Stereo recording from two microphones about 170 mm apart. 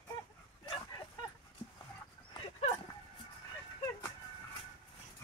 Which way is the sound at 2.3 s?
25° left (ahead or behind).